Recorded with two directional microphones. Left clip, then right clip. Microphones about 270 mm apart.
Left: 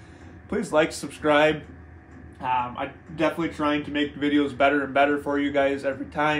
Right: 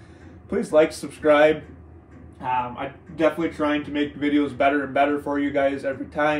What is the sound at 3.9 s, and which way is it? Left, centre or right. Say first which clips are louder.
A man's voice: right 1 dB; centre.